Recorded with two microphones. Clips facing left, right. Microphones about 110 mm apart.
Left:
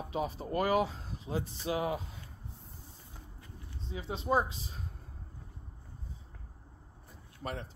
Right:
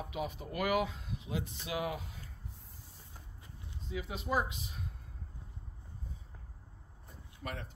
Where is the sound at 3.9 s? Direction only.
30° left (ahead or behind).